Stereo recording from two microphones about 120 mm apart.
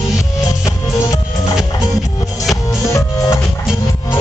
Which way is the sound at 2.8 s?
25° left (ahead or behind).